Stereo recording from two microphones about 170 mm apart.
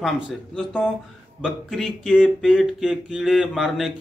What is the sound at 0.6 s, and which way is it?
Speech, centre (ahead or behind).